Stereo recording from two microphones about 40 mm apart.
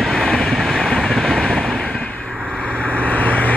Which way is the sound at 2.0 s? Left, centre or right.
Left.